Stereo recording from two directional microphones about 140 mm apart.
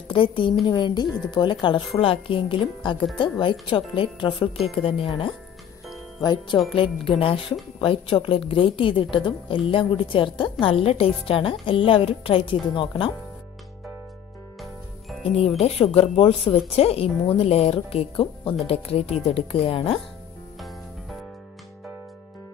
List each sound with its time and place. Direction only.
0.1 s a woman's voice: 35° left (ahead or behind)
15.6 s speech: 45° left (ahead or behind)
20.5 s music: centre (ahead or behind)